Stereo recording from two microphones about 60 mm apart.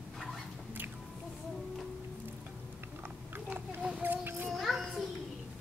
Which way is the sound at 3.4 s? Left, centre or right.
Right.